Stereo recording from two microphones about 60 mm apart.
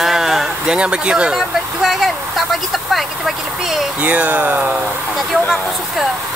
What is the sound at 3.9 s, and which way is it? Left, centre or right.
Speech, right.